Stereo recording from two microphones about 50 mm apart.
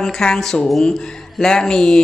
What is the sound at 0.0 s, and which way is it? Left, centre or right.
A woman's voice, centre.